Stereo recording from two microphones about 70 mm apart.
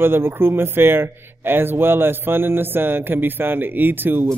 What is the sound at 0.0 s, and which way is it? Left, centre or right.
A man's voice, right.